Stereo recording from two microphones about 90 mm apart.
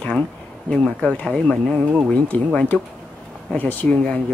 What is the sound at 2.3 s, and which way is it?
Speech, 15° left (ahead or behind).